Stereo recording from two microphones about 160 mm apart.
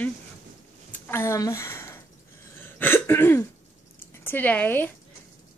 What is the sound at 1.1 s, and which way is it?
Speech, 15° left (ahead or behind).